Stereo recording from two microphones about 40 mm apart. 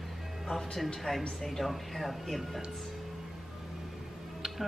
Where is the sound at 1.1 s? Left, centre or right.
Centre.